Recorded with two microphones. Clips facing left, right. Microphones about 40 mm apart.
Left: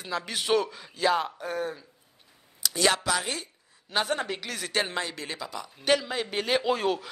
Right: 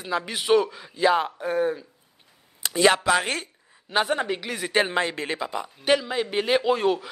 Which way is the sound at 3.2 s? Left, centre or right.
Right.